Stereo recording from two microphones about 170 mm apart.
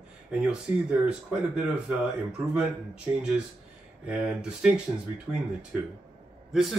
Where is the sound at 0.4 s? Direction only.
5° right (ahead or behind).